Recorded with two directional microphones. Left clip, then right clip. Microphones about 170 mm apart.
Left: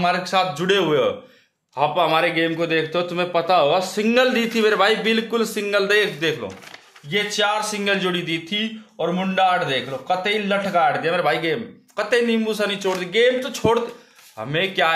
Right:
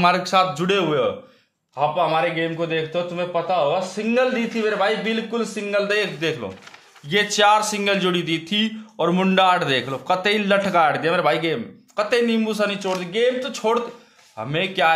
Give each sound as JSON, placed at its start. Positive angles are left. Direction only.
{"t": 0.0, "sound": "speech", "side_deg": -25}
{"t": 1.8, "sound": "a man's voice", "side_deg": 10}
{"t": 5.9, "sound": "speech", "side_deg": 0}
{"t": 7.1, "sound": "a man's voice", "side_deg": -30}